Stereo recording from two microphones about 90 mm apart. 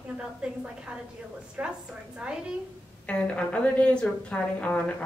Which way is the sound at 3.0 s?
15° left (ahead or behind).